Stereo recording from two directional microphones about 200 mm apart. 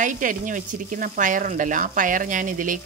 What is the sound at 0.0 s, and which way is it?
A woman's voice, 40° right (ahead or behind).